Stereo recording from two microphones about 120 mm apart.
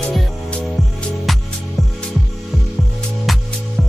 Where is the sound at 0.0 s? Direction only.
5° left (ahead or behind).